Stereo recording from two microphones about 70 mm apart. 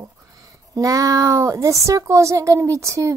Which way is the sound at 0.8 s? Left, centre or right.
Right.